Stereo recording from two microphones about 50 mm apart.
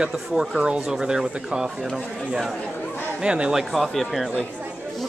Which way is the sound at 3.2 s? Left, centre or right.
Centre.